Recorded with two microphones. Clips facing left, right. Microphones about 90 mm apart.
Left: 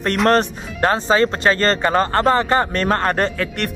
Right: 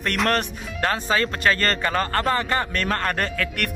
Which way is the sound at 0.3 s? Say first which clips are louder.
Left 7 dB; 30° left (ahead or behind).